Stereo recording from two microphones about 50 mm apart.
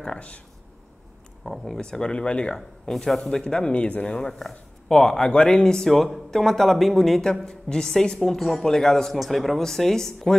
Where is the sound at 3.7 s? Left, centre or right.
Left.